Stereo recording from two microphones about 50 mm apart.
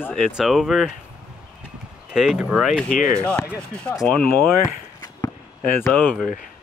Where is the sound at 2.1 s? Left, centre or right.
Centre.